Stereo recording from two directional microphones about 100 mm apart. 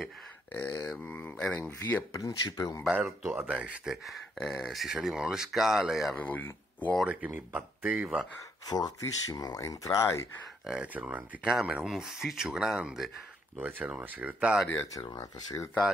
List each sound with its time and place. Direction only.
0.5 s speech: 15° left (ahead or behind)
1.6 s speech: 30° left (ahead or behind)
3.3 s speech: 20° right (ahead or behind)
6.1 s speech: 15° left (ahead or behind)
7.1 s speech: 15° right (ahead or behind)
8.6 s speech: 45° left (ahead or behind)
10.6 s speech: 10° right (ahead or behind)
13.6 s speech: 15° right (ahead or behind)
15.1 s speech: 30° left (ahead or behind)